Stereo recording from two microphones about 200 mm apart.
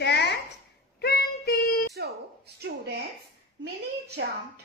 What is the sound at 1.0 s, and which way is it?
Child singing, 50° left (ahead or behind).